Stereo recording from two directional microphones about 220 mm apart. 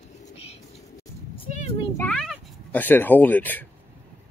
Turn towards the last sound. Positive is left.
turn(degrees=10)  # may be behind; listen again after turning